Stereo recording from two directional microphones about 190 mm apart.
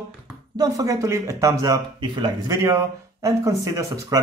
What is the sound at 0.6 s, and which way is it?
Speech, 15° right (ahead or behind).